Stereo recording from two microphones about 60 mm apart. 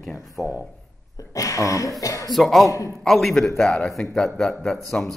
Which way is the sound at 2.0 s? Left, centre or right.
Left.